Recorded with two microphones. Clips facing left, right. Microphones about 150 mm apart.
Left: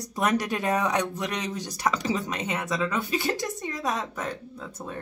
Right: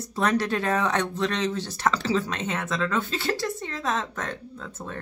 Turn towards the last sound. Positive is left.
turn(degrees=10)  # may be behind; listen again after turning